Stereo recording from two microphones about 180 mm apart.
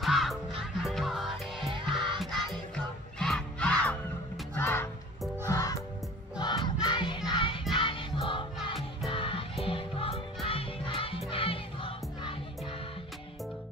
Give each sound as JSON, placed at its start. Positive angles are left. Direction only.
{"t": 0.0, "sound": "music", "side_deg": 0}
{"t": 6.4, "sound": "crowd", "side_deg": 25}
{"t": 7.2, "sound": "music", "side_deg": 30}